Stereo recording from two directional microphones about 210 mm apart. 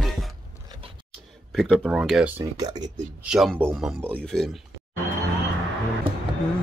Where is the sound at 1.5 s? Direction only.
Centre (ahead or behind).